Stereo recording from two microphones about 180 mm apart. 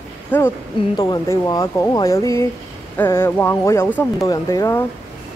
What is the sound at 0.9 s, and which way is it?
Speech, 20° left (ahead or behind).